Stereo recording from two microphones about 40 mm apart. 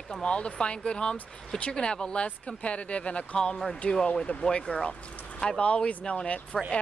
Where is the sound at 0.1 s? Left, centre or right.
Left.